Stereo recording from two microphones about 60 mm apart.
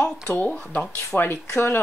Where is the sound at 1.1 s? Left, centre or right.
Centre.